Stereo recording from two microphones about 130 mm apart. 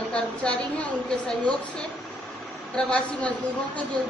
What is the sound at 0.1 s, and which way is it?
A woman's voice, 10° left (ahead or behind).